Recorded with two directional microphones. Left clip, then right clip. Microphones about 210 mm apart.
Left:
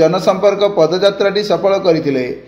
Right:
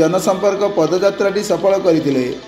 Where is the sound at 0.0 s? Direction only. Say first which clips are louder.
Left 3 dB; 25° right (ahead or behind).